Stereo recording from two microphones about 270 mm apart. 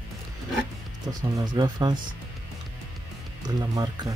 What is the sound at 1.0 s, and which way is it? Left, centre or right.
Speech, centre.